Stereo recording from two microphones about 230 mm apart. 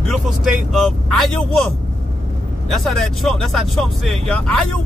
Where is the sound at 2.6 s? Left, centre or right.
Centre.